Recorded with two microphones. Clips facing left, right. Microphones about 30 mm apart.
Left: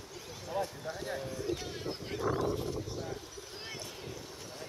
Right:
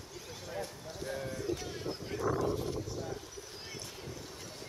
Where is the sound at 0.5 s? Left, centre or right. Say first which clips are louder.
Left 6 dB; left.